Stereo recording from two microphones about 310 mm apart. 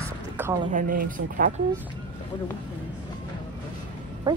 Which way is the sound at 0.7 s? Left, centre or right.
Right.